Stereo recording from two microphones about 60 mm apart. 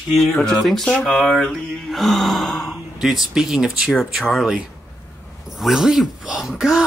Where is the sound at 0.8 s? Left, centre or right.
Centre.